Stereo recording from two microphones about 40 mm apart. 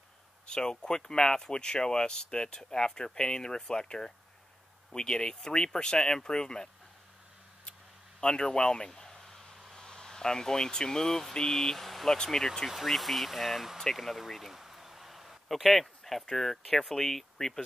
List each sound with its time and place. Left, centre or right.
0.5 s speech: centre
8.2 s speech: left; by 13.7 s centre
13.9 s a sound: centre
16.3 s speech: centre